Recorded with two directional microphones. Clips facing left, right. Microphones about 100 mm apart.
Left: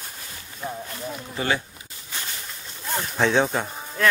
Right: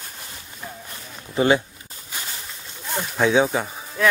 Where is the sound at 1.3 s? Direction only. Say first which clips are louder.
Right 8 dB; 20° right (ahead or behind).